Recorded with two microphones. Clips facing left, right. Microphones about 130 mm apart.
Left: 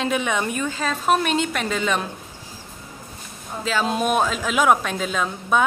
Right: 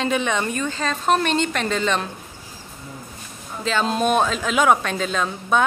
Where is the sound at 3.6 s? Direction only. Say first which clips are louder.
Right 1 dB; 5° left (ahead or behind).